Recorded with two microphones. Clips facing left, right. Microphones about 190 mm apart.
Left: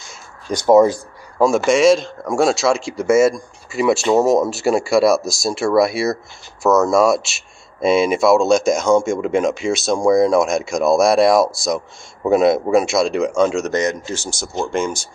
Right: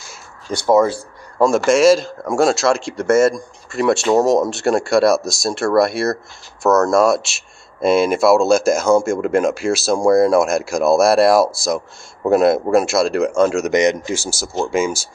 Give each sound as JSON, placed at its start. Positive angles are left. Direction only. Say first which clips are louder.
{"t": 0.5, "sound": "speech", "louder": "left 3 dB", "side_deg": 15}
{"t": 1.4, "sound": "speech", "louder": "right 1 dB", "side_deg": 0}
{"t": 13.7, "sound": "speech", "louder": "right 4 dB", "side_deg": -15}